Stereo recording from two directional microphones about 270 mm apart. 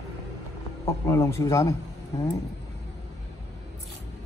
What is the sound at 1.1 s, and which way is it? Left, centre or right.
Speech, centre.